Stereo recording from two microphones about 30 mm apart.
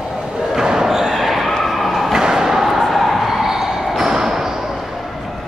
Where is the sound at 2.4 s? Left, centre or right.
Centre.